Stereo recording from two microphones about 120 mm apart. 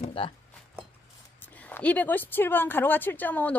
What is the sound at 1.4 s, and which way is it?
Speech, 15° left (ahead or behind).